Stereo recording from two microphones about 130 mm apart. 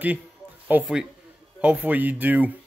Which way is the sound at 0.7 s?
15° right (ahead or behind).